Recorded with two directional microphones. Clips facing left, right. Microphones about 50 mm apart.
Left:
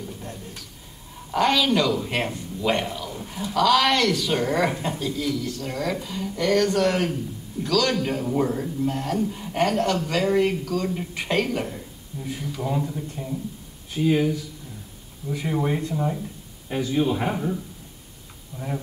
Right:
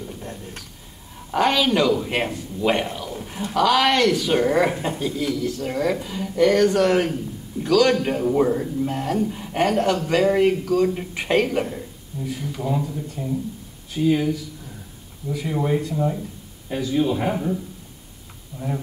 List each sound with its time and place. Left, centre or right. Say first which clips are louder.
0.2 s a sound: right 2 dB; centre
1.3 s a man's voice: right 1 dB; centre
12.2 s a man's voice: right 2 dB; centre
15.5 s a man's voice: right 3 dB; centre